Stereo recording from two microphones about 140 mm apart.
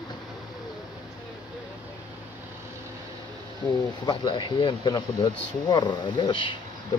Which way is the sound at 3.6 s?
30° left (ahead or behind).